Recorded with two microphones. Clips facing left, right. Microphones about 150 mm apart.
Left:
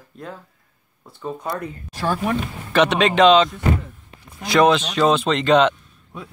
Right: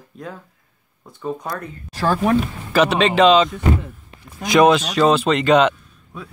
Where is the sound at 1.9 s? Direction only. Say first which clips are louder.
Right 4 dB; 90° right.